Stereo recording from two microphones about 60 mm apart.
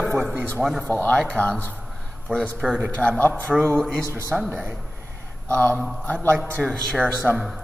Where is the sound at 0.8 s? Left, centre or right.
Left.